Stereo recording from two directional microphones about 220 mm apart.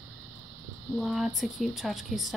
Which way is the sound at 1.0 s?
Centre (ahead or behind).